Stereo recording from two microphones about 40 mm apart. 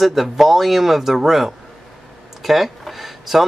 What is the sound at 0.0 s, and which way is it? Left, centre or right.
Speech, centre.